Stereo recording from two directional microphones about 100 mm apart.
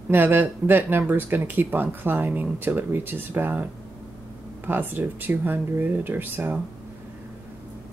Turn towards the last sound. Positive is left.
turn(degrees=-20)  # may be behind; listen again after turning